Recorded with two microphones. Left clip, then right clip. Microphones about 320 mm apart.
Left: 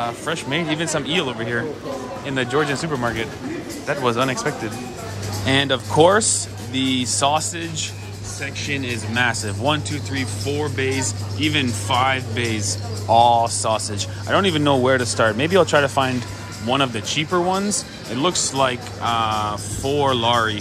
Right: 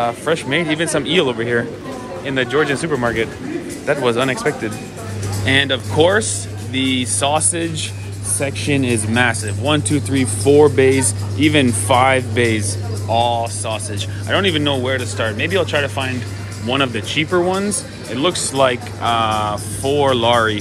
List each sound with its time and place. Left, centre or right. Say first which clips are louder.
0.0 s speech: right 6 dB; centre